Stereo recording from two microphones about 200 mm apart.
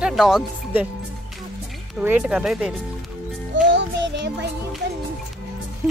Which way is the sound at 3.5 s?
65° right (ahead or behind).